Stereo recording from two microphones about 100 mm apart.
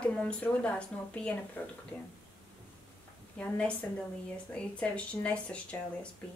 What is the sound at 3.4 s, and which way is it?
Speech, 15° left (ahead or behind).